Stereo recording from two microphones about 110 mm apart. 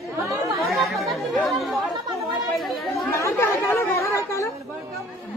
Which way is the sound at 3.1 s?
25° left (ahead or behind).